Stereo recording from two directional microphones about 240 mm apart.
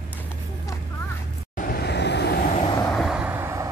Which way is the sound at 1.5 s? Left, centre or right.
Left.